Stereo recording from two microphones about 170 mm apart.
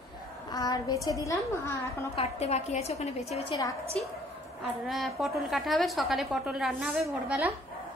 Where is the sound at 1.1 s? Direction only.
20° left (ahead or behind).